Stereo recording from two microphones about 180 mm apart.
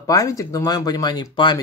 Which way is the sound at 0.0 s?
20° left (ahead or behind).